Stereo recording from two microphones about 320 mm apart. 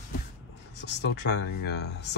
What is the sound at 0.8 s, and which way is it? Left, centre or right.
Speech, left.